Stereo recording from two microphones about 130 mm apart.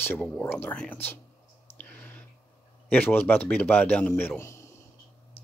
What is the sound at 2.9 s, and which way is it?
Speech, 15° left (ahead or behind).